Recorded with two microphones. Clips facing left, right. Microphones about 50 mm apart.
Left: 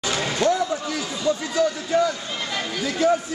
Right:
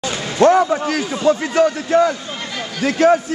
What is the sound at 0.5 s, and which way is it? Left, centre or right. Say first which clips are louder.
A man's voice: right 10 dB; right.